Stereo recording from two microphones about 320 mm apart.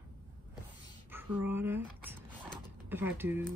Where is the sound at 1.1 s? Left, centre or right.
Centre.